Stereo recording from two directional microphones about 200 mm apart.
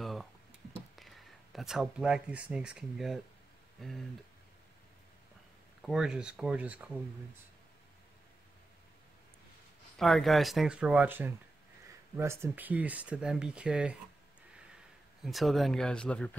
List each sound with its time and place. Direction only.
0.0 s a sound: centre (ahead or behind)
0.9 s speech: centre (ahead or behind)
5.8 s speech: centre (ahead or behind)
9.9 s speech: centre (ahead or behind)
15.2 s speech: centre (ahead or behind)